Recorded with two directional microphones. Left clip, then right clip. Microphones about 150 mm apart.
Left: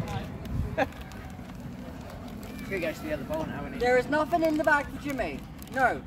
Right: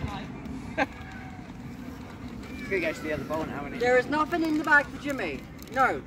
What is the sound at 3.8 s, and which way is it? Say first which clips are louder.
Speech: right 1 dB; 40° left (ahead or behind).